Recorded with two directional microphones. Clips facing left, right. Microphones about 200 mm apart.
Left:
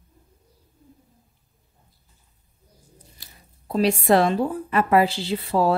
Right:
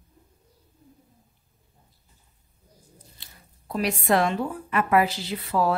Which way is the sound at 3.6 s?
30° left (ahead or behind).